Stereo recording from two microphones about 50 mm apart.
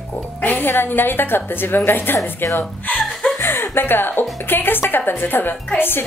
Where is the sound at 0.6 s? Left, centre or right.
Left.